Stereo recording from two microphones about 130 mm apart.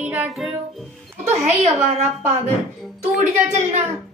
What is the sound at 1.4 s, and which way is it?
Speech, 60° right (ahead or behind).